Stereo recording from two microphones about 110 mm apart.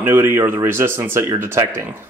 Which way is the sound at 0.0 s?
20° right (ahead or behind).